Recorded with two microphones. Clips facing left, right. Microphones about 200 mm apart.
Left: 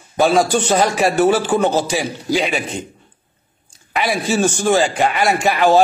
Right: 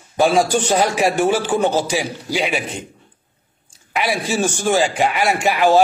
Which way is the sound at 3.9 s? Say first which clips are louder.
Left 2 dB; 10° right (ahead or behind).